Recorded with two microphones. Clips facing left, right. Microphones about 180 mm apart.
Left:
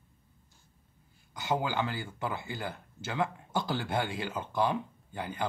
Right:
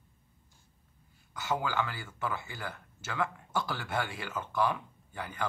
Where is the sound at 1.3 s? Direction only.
20° left (ahead or behind).